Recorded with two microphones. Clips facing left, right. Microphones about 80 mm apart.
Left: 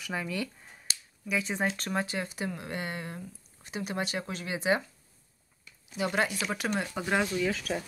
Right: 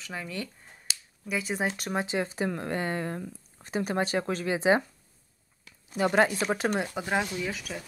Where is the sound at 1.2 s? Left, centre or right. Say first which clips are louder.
Even; centre; by 4.8 s right.